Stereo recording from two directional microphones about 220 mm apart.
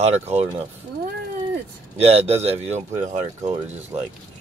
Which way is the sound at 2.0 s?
30° right (ahead or behind).